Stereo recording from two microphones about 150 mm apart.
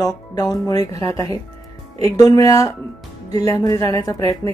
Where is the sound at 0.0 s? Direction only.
25° left (ahead or behind).